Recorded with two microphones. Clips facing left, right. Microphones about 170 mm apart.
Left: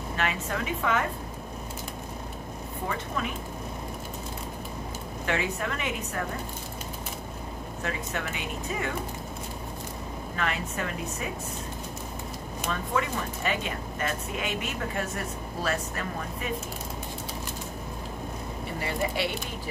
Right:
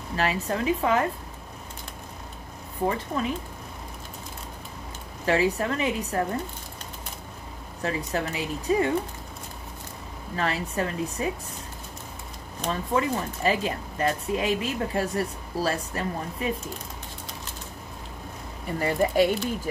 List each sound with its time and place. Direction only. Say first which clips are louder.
0.1 s speech: right 4 dB; 35° right (ahead or behind)
3.2 s speech: right 2 dB; 35° right (ahead or behind)
5.2 s speech: right 6 dB; 35° right (ahead or behind)
7.8 s speech: right 5 dB; 35° right (ahead or behind)
10.3 s speech: right 4 dB; 35° right (ahead or behind)
12.6 s speech: right 4 dB; 30° right (ahead or behind)
18.8 s speech: right 8 dB; 45° right (ahead or behind)